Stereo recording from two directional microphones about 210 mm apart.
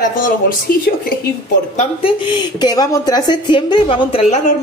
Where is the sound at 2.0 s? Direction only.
20° left (ahead or behind).